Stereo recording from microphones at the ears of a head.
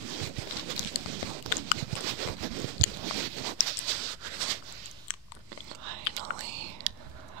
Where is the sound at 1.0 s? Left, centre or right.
Right.